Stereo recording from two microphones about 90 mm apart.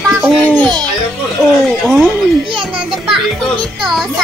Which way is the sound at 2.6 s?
5° right (ahead or behind).